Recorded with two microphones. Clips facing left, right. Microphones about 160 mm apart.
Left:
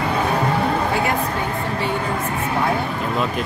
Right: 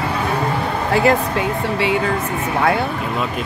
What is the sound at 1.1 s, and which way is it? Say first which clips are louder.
Speech: right 5 dB; 90° right.